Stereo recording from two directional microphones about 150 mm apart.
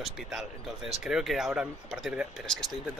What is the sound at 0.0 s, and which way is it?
A man's voice, centre (ahead or behind).